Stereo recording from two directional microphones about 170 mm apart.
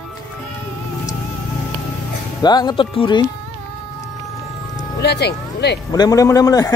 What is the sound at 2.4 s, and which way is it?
Speech, 25° left (ahead or behind).